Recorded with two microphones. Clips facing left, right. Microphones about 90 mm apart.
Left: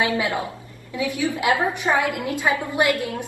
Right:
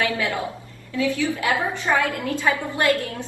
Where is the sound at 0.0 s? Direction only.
20° left (ahead or behind).